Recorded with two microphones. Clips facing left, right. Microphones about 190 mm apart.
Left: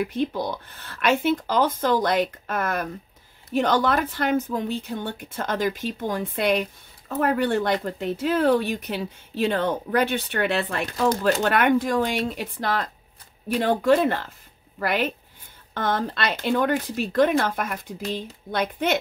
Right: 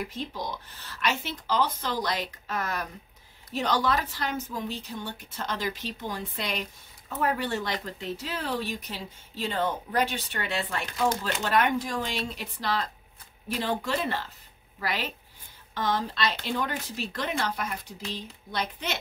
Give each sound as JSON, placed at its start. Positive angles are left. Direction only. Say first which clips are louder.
{"t": 0.0, "sound": "a woman's voice", "louder": "left 9 dB", "side_deg": 60}
{"t": 11.1, "sound": "speech", "louder": "left 9 dB", "side_deg": 40}
{"t": 11.4, "sound": "a woman's voice", "louder": "left 2 dB", "side_deg": 60}